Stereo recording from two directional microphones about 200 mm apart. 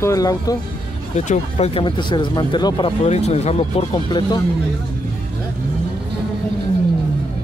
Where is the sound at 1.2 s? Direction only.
35° left (ahead or behind).